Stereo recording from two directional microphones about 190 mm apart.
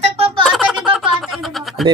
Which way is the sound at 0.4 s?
Centre (ahead or behind).